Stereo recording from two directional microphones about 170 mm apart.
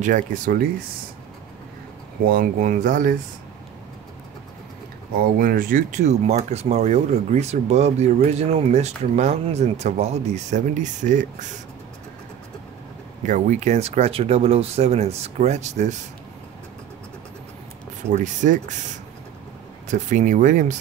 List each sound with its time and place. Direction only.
0.0 s speech: 50° right (ahead or behind)
2.2 s speech: 55° right (ahead or behind)
5.4 s speech: 55° right (ahead or behind)
13.2 s speech: 45° right (ahead or behind)
18.1 s speech: 45° right (ahead or behind)
19.9 s speech: 45° right (ahead or behind)